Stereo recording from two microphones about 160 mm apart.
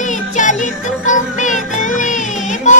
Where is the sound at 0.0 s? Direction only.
50° left (ahead or behind).